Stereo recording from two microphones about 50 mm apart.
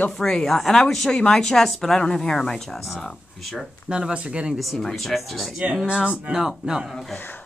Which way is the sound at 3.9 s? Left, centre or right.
Centre.